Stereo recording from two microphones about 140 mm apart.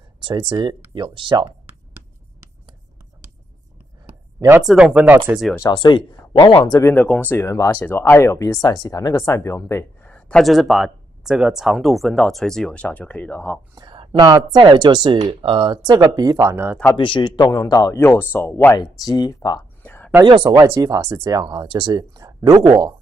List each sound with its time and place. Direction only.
0.2 s speech: 35° right (ahead or behind)
4.4 s speech: 20° right (ahead or behind)
4.6 s speech: 5° right (ahead or behind)
5.6 s speech: 30° left (ahead or behind)
6.9 s speech: 10° left (ahead or behind)
10.0 s speech: 10° left (ahead or behind)
13.7 s a sound: 35° right (ahead or behind)
14.5 s speech: 35° right (ahead or behind)
16.3 s speech: 15° right (ahead or behind)
16.9 s speech: 35° left (ahead or behind); by 18.8 s 15° left (ahead or behind)
18.8 s speech: 30° left (ahead or behind)
19.8 s a sound: 15° left (ahead or behind)
20.2 s speech: 35° right (ahead or behind)